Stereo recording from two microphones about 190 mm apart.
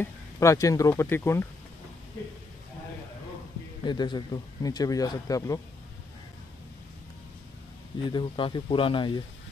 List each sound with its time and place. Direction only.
0.0 s speech: 15° left (ahead or behind)
3.8 s speech: 25° left (ahead or behind)
8.0 s speech: 25° left (ahead or behind)